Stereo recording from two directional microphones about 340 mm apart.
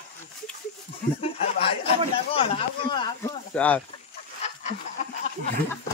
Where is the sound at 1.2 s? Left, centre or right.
Centre.